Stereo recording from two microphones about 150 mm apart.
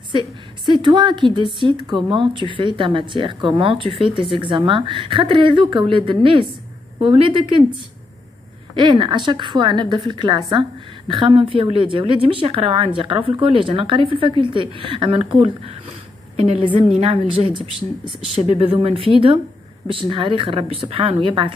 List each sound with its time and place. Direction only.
0.7 s speech: 30° right (ahead or behind)
8.7 s speech: 35° right (ahead or behind)
17.0 s speech: 40° right (ahead or behind)